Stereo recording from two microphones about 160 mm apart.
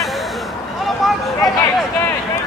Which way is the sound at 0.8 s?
Centre (ahead or behind).